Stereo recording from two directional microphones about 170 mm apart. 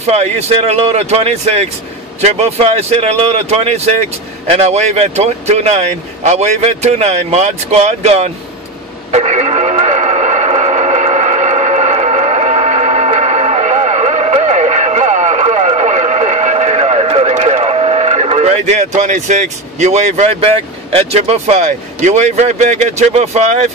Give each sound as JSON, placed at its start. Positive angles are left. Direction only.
{"t": 0.0, "sound": "speech", "side_deg": -40}
{"t": 9.1, "sound": "radio", "side_deg": -40}
{"t": 18.9, "sound": "speech", "side_deg": -45}